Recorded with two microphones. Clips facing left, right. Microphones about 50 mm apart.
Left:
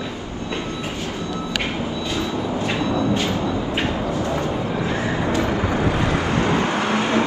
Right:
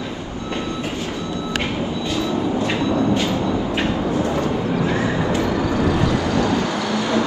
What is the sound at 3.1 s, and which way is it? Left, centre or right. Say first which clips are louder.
Train: right 2 dB; left.